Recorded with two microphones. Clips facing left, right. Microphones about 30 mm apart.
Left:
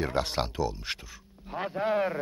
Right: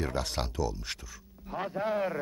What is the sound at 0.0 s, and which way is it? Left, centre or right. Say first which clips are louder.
A man's voice: left 4 dB; left.